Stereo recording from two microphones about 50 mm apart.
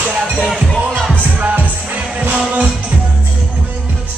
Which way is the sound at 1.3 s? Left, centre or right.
Right.